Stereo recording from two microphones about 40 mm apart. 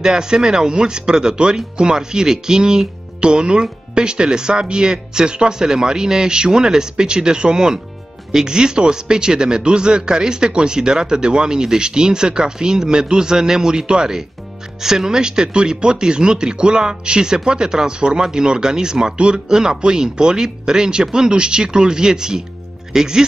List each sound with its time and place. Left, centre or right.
0.0 s speech: centre